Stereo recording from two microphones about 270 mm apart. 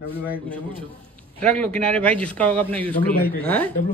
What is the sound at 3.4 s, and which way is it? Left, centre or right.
Speech, centre.